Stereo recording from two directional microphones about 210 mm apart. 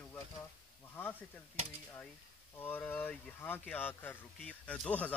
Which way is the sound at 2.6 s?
10° left (ahead or behind).